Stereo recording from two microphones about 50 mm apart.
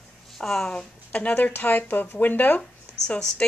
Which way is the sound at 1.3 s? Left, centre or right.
Left.